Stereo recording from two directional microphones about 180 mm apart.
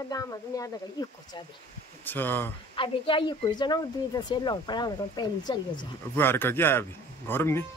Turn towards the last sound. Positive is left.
turn(degrees=15)  # may be behind; listen again after turning